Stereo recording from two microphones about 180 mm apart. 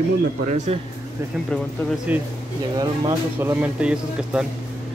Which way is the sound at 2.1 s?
10° right (ahead or behind).